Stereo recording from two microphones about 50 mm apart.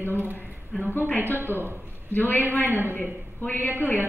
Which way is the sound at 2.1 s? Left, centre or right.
Left.